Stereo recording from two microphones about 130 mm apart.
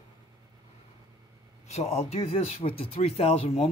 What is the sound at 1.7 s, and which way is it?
Speech, 55° left (ahead or behind).